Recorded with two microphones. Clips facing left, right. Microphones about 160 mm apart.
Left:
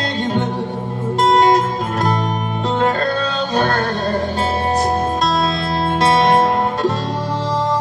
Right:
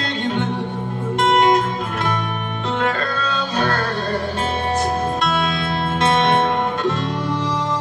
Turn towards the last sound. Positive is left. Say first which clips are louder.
# left 3 dB
turn(degrees=35)  # may be behind; listen again after turning